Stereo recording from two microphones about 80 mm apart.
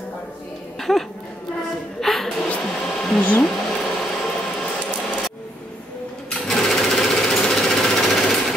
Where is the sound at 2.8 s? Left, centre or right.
Centre.